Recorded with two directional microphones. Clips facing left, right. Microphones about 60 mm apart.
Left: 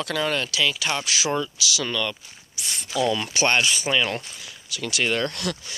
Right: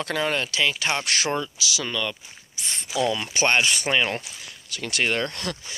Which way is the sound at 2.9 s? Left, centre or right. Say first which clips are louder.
Left 1 dB; centre.